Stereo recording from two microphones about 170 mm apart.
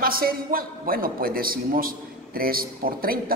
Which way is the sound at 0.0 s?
60° right (ahead or behind).